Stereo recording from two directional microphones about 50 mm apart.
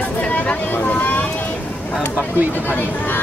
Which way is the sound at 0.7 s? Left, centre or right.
Left.